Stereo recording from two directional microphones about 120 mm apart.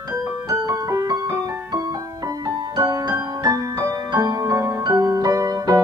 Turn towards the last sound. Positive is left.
turn(degrees=-30)  # may be behind; listen again after turning